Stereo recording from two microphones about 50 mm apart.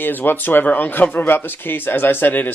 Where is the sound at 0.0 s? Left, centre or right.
Left.